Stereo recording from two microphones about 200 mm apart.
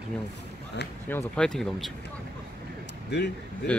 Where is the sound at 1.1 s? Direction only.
5° left (ahead or behind).